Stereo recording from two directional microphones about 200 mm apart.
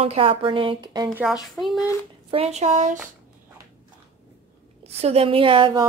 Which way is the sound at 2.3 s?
30° right (ahead or behind).